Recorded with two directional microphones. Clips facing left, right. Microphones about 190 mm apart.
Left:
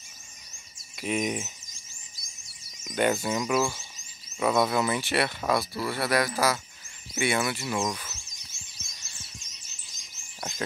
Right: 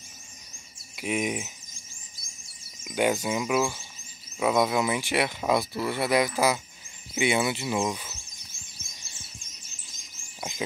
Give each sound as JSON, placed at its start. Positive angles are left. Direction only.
{"t": 0.9, "sound": "speech", "side_deg": -10}
{"t": 2.8, "sound": "speech", "side_deg": -10}